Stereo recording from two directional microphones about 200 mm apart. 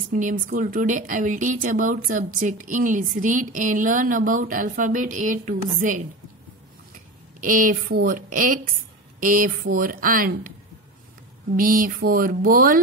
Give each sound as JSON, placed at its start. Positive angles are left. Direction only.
{"t": 0.1, "sound": "a woman's voice", "side_deg": -40}
{"t": 7.3, "sound": "speech", "side_deg": -45}
{"t": 11.5, "sound": "speech", "side_deg": -45}